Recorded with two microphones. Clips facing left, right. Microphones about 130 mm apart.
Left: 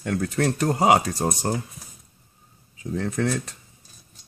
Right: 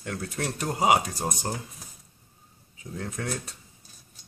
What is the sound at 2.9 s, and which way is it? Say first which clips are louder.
Speech: left 8 dB; 85° left.